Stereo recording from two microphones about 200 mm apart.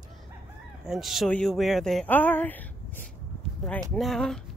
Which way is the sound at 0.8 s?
Centre (ahead or behind).